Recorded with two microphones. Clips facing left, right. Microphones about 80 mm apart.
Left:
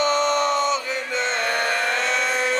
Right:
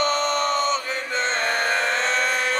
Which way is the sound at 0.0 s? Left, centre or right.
Right.